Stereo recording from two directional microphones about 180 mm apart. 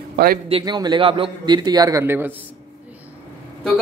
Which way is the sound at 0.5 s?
25° right (ahead or behind).